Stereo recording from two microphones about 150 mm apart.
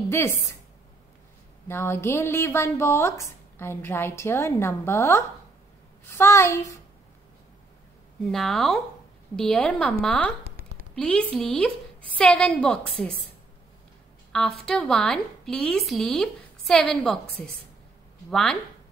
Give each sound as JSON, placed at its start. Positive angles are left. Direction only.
{"t": 0.1, "sound": "a woman's voice", "side_deg": 15}
{"t": 1.7, "sound": "speech", "side_deg": 15}
{"t": 8.2, "sound": "a woman's voice", "side_deg": 0}
{"t": 14.3, "sound": "a woman's voice", "side_deg": 5}